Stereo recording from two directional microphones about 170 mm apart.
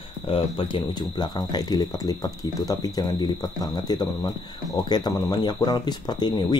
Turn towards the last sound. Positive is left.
turn(degrees=25)  # may be behind; listen again after turning